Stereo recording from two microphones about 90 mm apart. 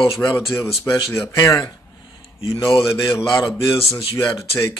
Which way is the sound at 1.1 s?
35° left (ahead or behind).